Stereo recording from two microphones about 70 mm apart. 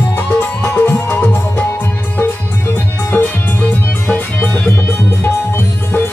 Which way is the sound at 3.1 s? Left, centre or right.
Left.